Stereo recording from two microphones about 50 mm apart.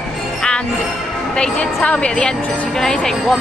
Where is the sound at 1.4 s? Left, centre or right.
Left.